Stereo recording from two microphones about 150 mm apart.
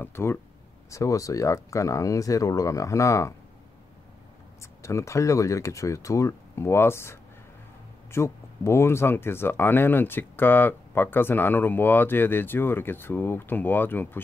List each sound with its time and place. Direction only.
0.0 s speech: 15° left (ahead or behind)
4.6 s speech: 20° left (ahead or behind)